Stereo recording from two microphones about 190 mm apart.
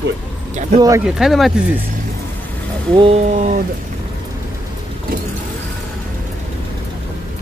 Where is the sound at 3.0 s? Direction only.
35° right (ahead or behind).